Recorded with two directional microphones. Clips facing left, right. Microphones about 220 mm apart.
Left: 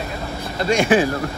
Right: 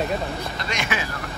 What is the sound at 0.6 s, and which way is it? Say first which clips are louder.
Speech: left 15 dB; 35° left (ahead or behind).